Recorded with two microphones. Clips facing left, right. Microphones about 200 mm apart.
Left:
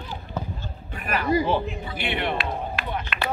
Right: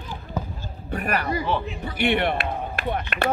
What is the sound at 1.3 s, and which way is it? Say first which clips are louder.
Speech: left 3 dB; 30° left (ahead or behind).